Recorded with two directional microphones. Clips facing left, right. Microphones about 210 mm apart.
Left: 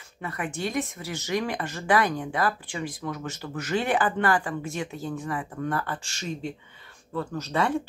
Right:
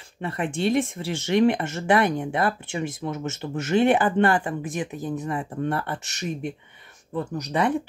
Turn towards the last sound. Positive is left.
turn(degrees=-15)  # may be behind; listen again after turning